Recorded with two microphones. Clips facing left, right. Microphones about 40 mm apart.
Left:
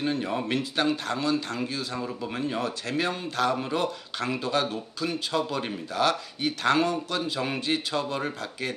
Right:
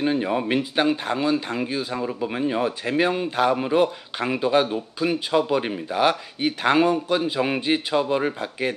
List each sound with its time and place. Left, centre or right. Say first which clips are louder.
0.0 s speech: right 5 dB; centre